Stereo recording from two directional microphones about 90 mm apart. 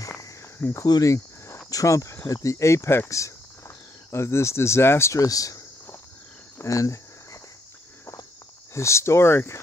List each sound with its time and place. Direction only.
0.6 s speech: 25° left (ahead or behind)
0.8 s speech: 50° left (ahead or behind)
1.7 s speech: 40° left (ahead or behind)
6.6 s speech: 35° left (ahead or behind)
8.7 s speech: 30° left (ahead or behind)